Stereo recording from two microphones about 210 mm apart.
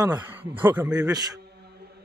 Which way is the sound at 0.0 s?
10° right (ahead or behind).